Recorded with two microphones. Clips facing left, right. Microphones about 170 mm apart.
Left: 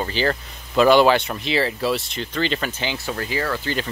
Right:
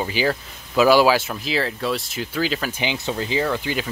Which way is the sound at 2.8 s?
20° right (ahead or behind).